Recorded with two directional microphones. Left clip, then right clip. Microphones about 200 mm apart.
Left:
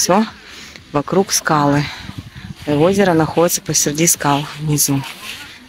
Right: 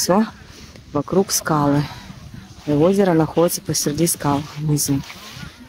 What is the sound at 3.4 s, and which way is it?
Speech, centre (ahead or behind).